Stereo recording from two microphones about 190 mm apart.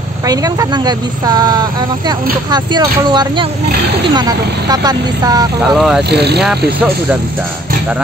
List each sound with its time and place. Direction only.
0.3 s speech: 20° right (ahead or behind)
5.8 s speech: centre (ahead or behind)
6.0 s speech: 60° right (ahead or behind)